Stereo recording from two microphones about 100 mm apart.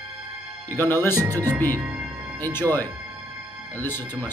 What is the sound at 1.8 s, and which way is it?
Speech, 10° right (ahead or behind).